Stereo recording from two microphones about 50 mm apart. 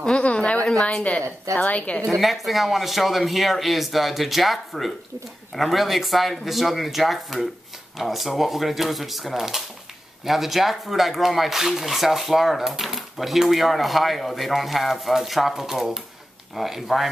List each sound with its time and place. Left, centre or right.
0.0 s a sound: left
0.8 s a woman's voice: left
2.0 s speech: centre